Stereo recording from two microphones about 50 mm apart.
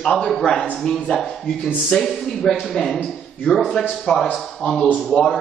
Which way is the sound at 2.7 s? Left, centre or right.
Centre.